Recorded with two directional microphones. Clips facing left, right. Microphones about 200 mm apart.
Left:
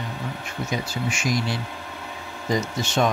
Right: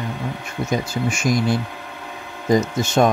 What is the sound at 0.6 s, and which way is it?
Speech, 50° right (ahead or behind).